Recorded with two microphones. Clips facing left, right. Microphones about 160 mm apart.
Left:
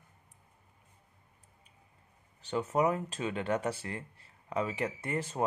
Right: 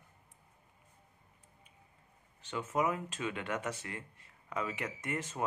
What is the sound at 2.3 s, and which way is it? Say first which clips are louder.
Speech: left 4 dB; 35° left (ahead or behind).